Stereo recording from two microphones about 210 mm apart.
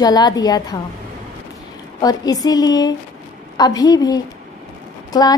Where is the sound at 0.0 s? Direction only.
20° left (ahead or behind).